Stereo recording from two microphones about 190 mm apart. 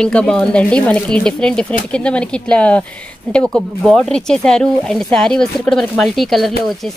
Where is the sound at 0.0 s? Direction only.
5° left (ahead or behind).